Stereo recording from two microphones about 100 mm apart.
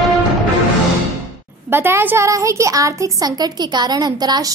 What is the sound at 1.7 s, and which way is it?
A woman's voice, 20° right (ahead or behind).